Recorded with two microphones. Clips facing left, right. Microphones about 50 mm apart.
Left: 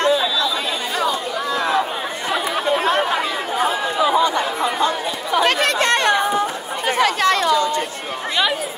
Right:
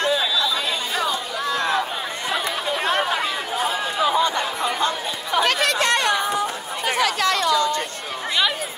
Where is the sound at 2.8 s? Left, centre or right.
Centre.